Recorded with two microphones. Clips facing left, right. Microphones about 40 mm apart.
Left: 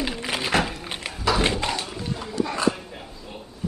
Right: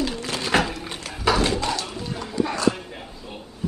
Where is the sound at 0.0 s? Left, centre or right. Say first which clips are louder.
Even; left.